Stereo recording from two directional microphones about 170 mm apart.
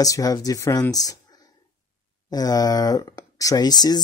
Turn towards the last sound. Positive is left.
turn(degrees=25)  # may be behind; listen again after turning